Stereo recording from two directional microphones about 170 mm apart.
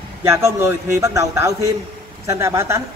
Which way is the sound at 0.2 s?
15° right (ahead or behind).